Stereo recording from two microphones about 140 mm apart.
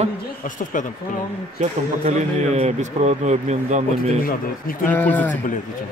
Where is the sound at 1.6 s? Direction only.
55° right (ahead or behind).